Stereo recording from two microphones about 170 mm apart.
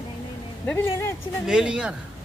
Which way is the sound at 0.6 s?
10° left (ahead or behind).